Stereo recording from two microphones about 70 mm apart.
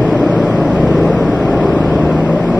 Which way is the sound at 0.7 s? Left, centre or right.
Centre.